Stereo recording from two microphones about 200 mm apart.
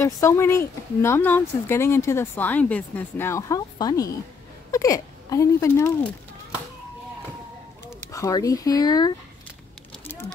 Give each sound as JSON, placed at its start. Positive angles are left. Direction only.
{"t": 0.0, "sound": "speech", "side_deg": 15}
{"t": 8.1, "sound": "speech", "side_deg": 15}